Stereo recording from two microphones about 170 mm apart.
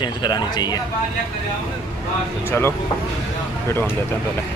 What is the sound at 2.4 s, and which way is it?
Speech, 15° left (ahead or behind).